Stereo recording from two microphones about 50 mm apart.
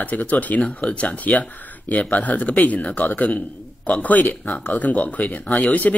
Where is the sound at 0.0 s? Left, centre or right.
Left.